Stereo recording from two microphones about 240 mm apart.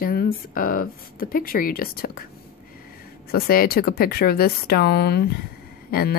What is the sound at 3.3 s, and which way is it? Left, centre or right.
Speech, left.